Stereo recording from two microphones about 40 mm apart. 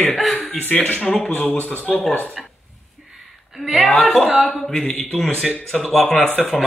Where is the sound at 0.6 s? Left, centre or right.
Left.